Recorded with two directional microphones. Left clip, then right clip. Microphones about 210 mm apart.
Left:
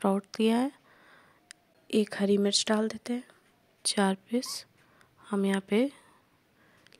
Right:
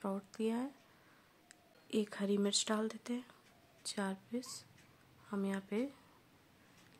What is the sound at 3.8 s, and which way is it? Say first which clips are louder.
Speech: left 14 dB; 40° left (ahead or behind).